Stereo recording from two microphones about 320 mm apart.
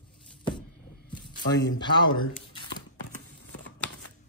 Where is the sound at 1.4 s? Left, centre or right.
Left.